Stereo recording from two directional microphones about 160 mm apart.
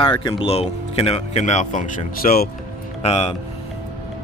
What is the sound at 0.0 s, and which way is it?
Speech, 30° left (ahead or behind).